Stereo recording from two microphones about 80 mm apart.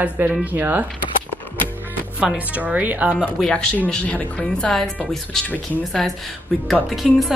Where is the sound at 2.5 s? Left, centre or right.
Centre.